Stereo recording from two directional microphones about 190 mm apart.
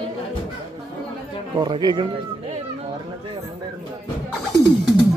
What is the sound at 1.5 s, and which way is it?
Speech, 25° right (ahead or behind).